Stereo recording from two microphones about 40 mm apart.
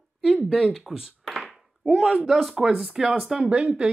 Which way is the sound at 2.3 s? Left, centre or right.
Centre.